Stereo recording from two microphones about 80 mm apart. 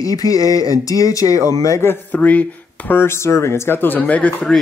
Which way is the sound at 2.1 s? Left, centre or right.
Centre.